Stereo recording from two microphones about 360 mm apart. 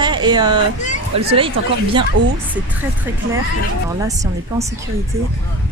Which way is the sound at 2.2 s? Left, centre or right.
Right.